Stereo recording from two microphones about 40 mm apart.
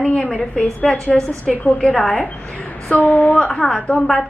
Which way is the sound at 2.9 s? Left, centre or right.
Left.